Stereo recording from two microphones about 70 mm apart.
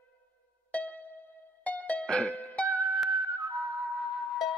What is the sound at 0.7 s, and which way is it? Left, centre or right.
Music, left.